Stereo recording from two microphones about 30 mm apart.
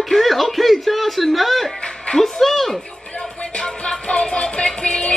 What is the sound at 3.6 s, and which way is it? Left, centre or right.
Music, left.